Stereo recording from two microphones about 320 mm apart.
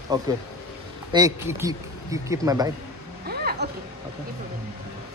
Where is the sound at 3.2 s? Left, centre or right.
Right.